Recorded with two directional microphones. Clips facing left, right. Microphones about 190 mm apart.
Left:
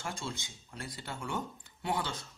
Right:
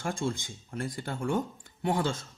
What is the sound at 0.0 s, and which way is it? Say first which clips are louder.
A man's voice: right 8 dB; 50° right (ahead or behind).